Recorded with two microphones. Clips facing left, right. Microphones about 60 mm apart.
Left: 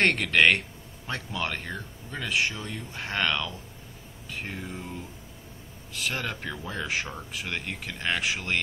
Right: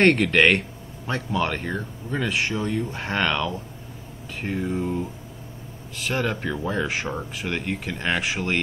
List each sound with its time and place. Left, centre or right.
0.0 s speech: centre
2.2 s speech: centre
2.5 s speech: centre
5.9 s speech: centre